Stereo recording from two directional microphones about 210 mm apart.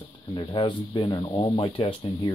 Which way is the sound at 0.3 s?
20° left (ahead or behind).